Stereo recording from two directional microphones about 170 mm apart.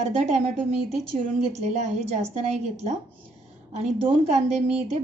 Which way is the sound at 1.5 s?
40° right (ahead or behind).